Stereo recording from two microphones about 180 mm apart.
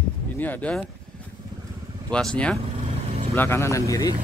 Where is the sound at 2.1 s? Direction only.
5° left (ahead or behind).